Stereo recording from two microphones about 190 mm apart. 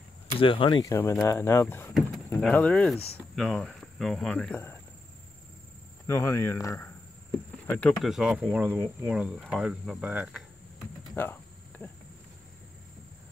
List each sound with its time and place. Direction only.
0.4 s speech: 25° left (ahead or behind)
0.8 s speech: 15° left (ahead or behind)
6.0 s speech: 15° left (ahead or behind); by 10.4 s 5° right (ahead or behind)
11.1 s insect: 10° left (ahead or behind)